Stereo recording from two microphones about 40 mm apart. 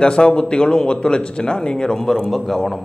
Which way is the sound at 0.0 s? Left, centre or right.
Left.